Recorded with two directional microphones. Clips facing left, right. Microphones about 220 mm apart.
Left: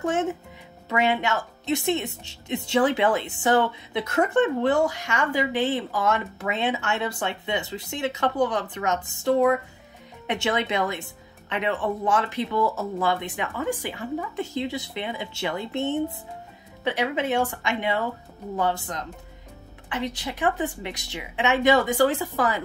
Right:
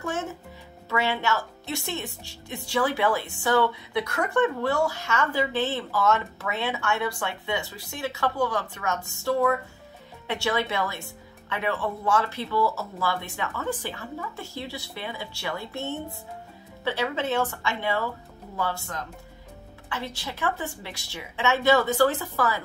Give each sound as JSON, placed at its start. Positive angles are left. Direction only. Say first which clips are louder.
{"t": 0.8, "sound": "a woman's voice", "louder": "left 3 dB", "side_deg": 15}